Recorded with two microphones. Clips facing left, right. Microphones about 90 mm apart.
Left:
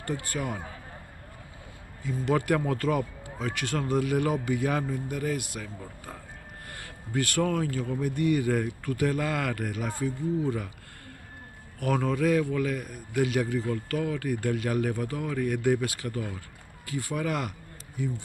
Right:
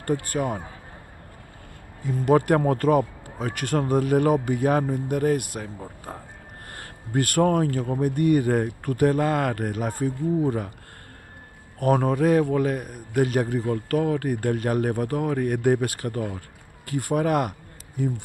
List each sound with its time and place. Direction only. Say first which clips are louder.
0.0 s speech: right 7 dB; 45° right (ahead or behind)
2.0 s speech: right 6 dB; 45° right (ahead or behind)
5.8 s speech: right 5 dB; 35° right (ahead or behind)
6.7 s speech: right 5 dB; 45° right (ahead or behind)
11.8 s speech: right 5 dB; 40° right (ahead or behind)